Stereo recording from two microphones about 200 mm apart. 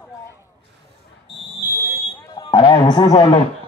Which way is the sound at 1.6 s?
10° right (ahead or behind).